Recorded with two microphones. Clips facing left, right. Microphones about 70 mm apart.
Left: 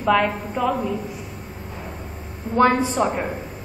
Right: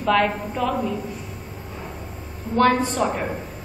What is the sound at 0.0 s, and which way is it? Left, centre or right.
Speech, centre.